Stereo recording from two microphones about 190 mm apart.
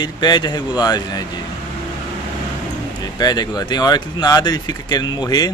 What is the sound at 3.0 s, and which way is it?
Speech, 20° left (ahead or behind).